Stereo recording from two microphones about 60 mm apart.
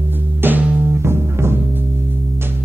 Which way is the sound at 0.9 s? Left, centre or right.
Right.